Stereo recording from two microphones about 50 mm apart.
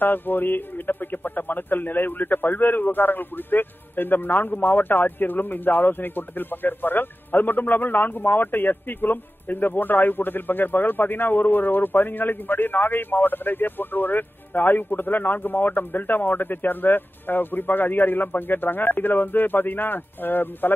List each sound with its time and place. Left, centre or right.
0.0 s speech: left